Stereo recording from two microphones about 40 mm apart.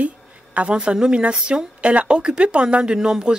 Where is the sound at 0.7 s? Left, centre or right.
Right.